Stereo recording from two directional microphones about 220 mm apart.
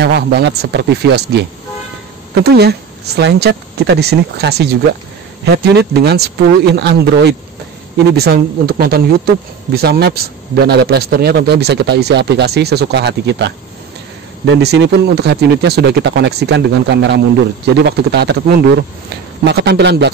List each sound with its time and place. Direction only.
0.0 s speech: 50° right (ahead or behind)